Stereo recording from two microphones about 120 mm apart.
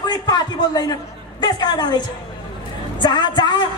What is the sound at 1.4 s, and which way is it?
A woman's voice, 35° left (ahead or behind).